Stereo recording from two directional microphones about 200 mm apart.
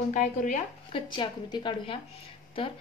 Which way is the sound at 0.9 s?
25° left (ahead or behind).